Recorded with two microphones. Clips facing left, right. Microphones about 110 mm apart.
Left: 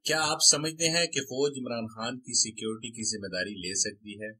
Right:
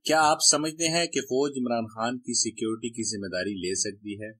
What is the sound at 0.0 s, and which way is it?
Speech, 45° right (ahead or behind).